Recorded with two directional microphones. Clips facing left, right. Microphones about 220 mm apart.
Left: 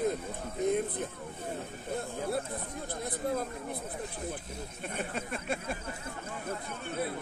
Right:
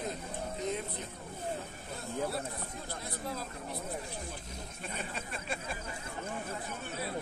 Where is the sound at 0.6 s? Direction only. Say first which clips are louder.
Left 9 dB; 50° left (ahead or behind).